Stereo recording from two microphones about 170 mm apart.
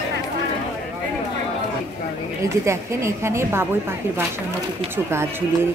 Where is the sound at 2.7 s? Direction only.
15° right (ahead or behind).